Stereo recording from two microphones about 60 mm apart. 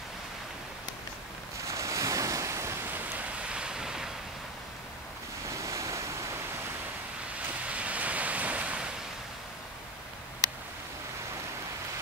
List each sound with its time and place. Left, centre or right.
1.7 s waves: right
2.9 s waves: right
5.5 s waves: right
7.3 s waves: right